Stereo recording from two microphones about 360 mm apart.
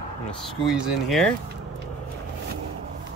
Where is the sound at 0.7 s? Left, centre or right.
Centre.